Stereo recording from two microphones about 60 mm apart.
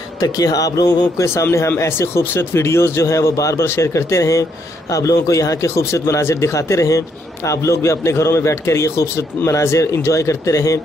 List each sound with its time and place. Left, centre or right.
0.2 s speech: left